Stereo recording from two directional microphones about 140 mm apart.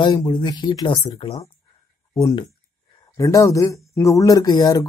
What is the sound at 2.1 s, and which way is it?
A man's voice, 25° left (ahead or behind).